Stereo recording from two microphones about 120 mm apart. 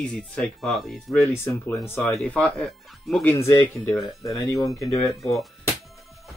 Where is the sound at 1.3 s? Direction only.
20° left (ahead or behind).